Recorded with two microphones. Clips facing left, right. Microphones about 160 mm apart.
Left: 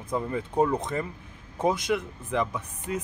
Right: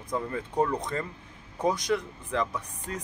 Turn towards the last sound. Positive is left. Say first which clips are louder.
# left 4 dB
turn(degrees=20)  # may be behind; listen again after turning